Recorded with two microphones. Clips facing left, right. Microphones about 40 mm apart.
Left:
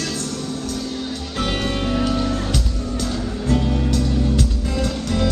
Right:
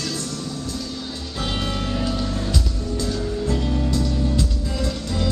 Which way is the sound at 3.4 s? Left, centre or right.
Left.